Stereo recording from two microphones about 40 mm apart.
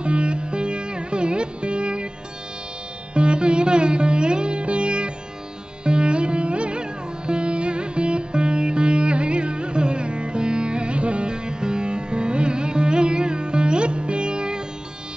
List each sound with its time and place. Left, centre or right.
0.0 s music: right
3.2 s music: right